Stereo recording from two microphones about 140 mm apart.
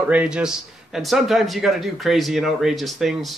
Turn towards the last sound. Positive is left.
turn(degrees=0)  # may be behind; listen again after turning